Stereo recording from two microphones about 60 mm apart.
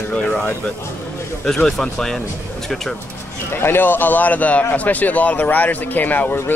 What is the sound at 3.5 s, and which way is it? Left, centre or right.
A man's voice, left.